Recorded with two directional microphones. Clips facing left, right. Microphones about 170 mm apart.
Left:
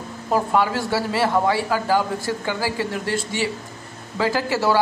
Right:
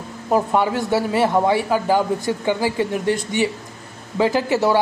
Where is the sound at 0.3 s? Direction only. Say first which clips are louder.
Right 2 dB; 20° right (ahead or behind).